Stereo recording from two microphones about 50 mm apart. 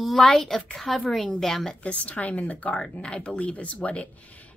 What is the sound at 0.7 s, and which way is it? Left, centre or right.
Speech, centre.